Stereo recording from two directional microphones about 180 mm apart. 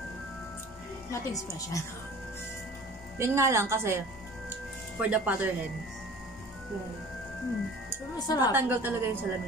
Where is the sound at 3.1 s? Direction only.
15° right (ahead or behind).